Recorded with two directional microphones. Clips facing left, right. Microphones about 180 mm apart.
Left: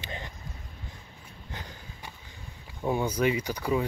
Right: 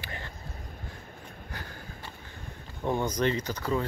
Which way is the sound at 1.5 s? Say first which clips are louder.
Left 1 dB; 20° left (ahead or behind).